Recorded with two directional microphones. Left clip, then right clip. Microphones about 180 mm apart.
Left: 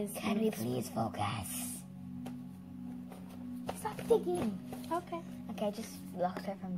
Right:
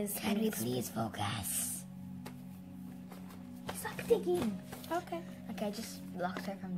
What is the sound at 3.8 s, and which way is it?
Music, centre (ahead or behind).